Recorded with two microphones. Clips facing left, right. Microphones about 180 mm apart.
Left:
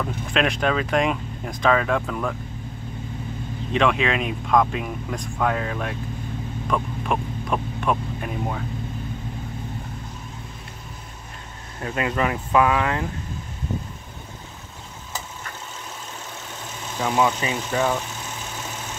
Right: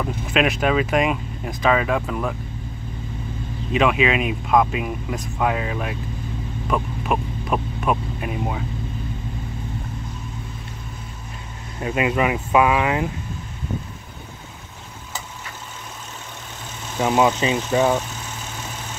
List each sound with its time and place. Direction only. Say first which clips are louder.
0.0 s speech: right 2 dB; 5° right (ahead or behind)
3.7 s speech: right 2 dB; 5° right (ahead or behind)
6.7 s hum: right 2 dB; 5° right (ahead or behind)
11.8 s speech: right 3 dB; 10° right (ahead or behind)
17.0 s speech: right 4 dB; 20° right (ahead or behind)